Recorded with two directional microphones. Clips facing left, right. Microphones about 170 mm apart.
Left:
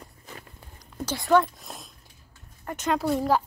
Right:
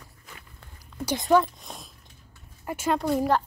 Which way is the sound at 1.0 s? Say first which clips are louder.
Right 3 dB; 20° right (ahead or behind).